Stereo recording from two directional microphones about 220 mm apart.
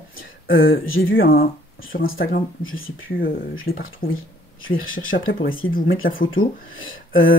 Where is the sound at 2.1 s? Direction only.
45° left (ahead or behind).